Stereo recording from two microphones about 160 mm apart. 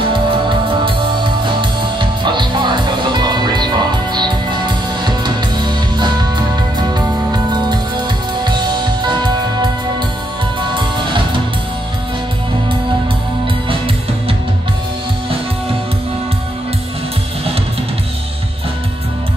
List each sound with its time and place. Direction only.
0.1 s music: 30° right (ahead or behind)
8.5 s music: 30° right (ahead or behind)